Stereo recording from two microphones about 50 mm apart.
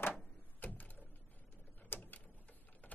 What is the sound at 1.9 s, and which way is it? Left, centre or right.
Printer, left.